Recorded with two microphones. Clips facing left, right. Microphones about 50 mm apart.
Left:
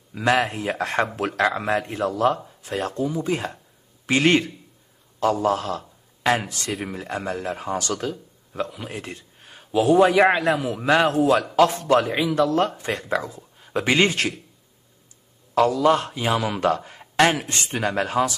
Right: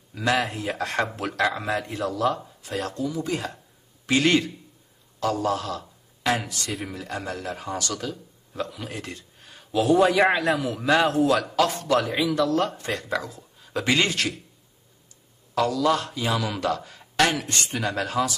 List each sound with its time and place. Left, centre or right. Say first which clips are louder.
0.1 s speech: left 3 dB; left
8.5 s a man's voice: left 2 dB; left
15.7 s speech: left 4 dB; left